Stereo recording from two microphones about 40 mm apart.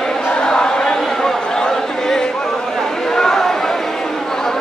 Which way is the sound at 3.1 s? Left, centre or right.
Centre.